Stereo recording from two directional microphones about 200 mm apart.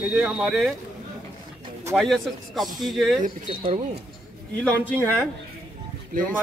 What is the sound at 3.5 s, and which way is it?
Speech, 25° right (ahead or behind).